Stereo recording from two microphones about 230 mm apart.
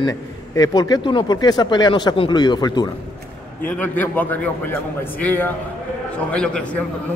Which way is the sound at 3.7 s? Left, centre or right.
Centre.